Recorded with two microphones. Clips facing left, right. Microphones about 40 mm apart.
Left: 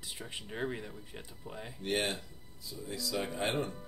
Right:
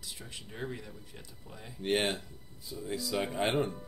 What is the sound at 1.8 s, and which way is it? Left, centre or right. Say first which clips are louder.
Speech: right 3 dB; right.